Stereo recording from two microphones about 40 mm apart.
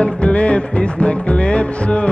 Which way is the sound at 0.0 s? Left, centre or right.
Left.